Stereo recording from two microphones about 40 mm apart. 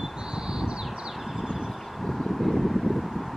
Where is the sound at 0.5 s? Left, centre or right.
Centre.